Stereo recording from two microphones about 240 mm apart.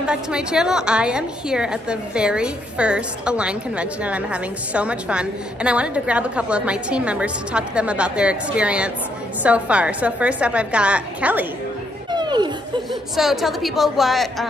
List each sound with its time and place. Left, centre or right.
0.0 s a woman's voice: centre
12.1 s children playing: centre
13.1 s a woman's voice: centre